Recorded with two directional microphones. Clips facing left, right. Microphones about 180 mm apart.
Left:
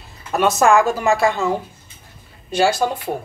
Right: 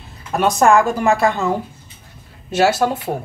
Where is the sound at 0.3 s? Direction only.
5° left (ahead or behind).